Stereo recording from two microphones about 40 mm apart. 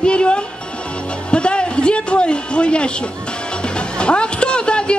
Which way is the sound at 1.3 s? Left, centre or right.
Left.